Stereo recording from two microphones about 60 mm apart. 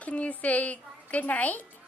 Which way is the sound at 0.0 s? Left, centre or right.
Left.